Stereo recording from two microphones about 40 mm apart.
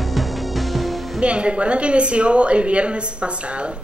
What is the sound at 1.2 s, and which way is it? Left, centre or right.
Speech, right.